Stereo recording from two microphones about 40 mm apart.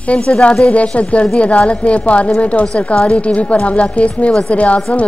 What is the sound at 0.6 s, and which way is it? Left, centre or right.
Speech, left.